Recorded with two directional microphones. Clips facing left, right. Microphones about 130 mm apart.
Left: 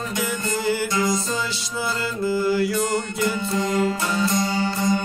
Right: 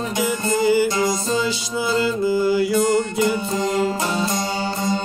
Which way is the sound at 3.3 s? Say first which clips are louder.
Right 2 dB; 25° right (ahead or behind).